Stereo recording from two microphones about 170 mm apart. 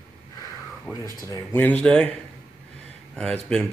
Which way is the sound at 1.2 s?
15° left (ahead or behind).